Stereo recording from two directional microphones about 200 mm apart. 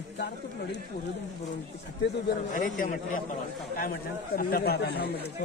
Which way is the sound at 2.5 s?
40° left (ahead or behind).